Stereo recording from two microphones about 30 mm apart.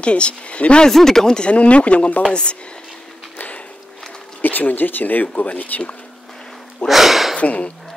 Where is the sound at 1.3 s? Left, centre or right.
Left.